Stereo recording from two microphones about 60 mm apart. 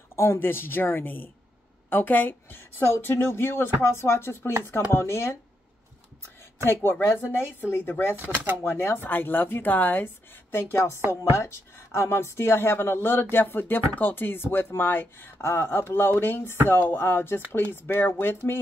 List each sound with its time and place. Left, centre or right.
0.1 s a sound: left
0.4 s speech: left
6.6 s speech: left